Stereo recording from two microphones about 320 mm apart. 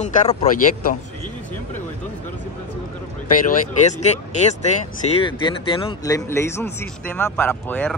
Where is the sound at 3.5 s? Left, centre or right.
Left.